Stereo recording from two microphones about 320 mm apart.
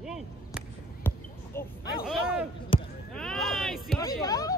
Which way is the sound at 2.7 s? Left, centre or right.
Centre.